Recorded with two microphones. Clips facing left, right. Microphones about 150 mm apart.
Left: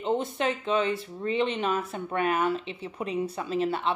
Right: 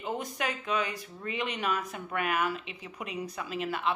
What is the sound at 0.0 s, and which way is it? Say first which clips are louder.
A woman's voice: left 7 dB; 25° left (ahead or behind).